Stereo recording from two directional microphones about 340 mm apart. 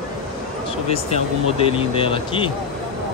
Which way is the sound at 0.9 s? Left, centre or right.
Centre.